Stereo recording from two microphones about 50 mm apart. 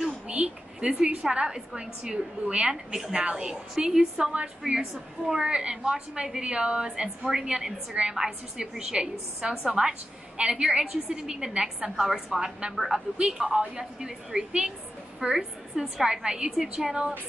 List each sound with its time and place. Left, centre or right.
0.3 s a woman's voice: centre
4.3 s a woman's voice: right
4.7 s a woman's voice: centre